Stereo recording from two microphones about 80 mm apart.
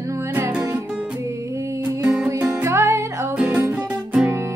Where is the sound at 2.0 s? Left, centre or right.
Centre.